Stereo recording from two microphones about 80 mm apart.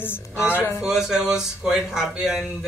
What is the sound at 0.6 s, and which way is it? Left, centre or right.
Speech, left.